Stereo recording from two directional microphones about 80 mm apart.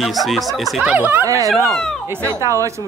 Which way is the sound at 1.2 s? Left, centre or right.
Right.